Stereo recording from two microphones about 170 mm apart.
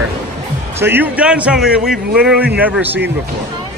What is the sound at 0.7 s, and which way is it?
A man's voice, 10° right (ahead or behind).